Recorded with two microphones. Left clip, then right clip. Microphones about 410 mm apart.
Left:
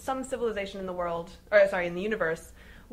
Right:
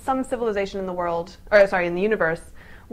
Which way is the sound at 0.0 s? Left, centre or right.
Right.